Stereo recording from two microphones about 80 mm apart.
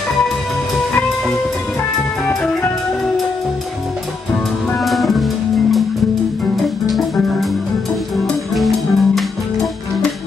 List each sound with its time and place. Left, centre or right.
4.7 s music: centre
8.5 s music: centre